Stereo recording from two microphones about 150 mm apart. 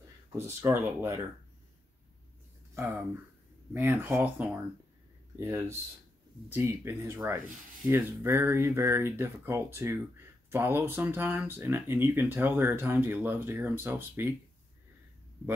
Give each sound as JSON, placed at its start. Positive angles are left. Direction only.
{"t": 0.6, "sound": "speech", "side_deg": -20}
{"t": 2.8, "sound": "speech", "side_deg": -20}